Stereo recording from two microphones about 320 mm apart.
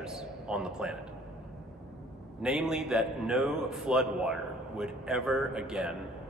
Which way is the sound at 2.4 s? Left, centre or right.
Centre.